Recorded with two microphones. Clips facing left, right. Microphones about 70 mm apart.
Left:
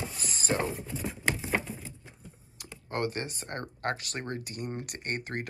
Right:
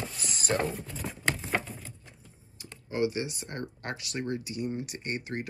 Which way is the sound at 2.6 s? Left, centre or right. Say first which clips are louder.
Left 1 dB; left.